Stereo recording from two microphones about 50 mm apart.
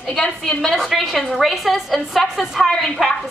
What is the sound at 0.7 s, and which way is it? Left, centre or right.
A woman's voice, centre.